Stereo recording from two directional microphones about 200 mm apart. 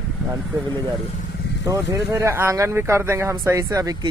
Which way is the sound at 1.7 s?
15° right (ahead or behind).